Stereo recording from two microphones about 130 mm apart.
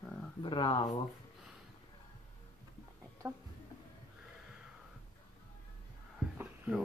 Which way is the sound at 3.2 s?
20° right (ahead or behind).